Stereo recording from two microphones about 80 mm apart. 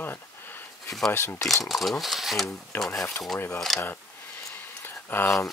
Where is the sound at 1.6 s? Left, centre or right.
Centre.